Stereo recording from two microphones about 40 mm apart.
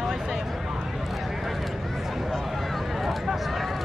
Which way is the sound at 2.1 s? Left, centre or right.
Centre.